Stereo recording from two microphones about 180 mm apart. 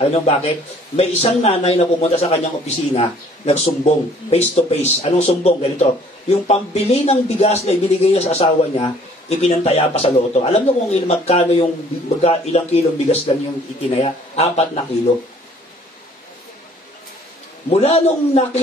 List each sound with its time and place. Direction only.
0.0 s a man's voice: 35° left (ahead or behind)
17.6 s a man's voice: 35° left (ahead or behind)